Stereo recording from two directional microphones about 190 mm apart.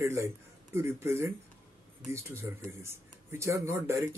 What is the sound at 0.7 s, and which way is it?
Speech, 15° right (ahead or behind).